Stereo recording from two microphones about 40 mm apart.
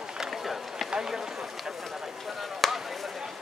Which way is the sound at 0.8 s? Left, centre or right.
Centre.